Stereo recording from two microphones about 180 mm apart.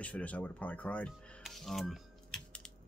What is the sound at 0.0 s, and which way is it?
Speech, 10° left (ahead or behind).